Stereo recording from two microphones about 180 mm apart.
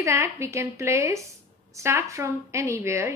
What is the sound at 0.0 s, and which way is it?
A woman's voice, 15° right (ahead or behind).